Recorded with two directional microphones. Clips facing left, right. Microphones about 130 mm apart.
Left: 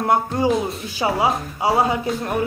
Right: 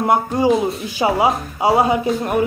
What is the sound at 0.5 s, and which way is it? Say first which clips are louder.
Speech: right 4 dB; centre (ahead or behind).